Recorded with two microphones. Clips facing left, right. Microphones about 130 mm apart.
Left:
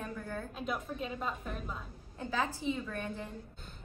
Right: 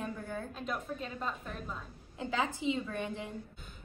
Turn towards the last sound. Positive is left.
turn(degrees=-15)  # may be behind; listen again after turning